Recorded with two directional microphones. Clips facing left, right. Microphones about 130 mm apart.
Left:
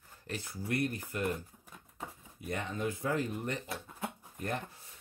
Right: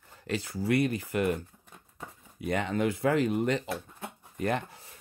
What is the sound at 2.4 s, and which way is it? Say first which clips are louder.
Speech: right 7 dB; 90° right.